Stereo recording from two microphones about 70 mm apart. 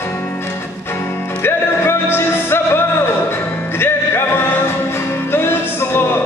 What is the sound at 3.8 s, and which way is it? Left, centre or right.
Music, left.